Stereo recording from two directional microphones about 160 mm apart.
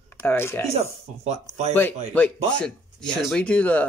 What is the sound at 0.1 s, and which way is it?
Speech, 15° left (ahead or behind).